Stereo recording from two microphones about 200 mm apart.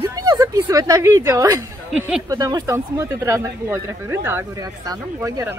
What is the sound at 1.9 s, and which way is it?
Speech, 5° right (ahead or behind).